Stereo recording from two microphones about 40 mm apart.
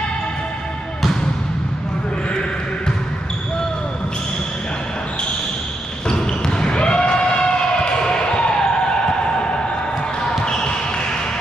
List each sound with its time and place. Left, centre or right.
6.0 s basketball bounce: centre
10.4 s basketball bounce: left